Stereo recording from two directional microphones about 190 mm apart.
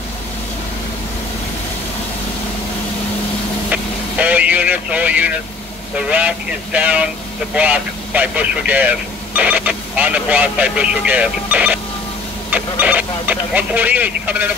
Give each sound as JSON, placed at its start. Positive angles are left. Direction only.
{"t": 3.7, "sound": "speech", "side_deg": -10}